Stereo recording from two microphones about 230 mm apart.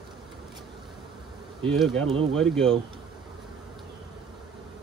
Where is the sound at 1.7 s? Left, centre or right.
Centre.